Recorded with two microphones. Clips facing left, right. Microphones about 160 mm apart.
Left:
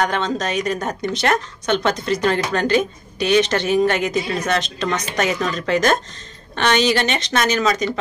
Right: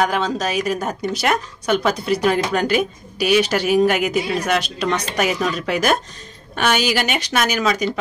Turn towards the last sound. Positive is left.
turn(degrees=-10)  # may be behind; listen again after turning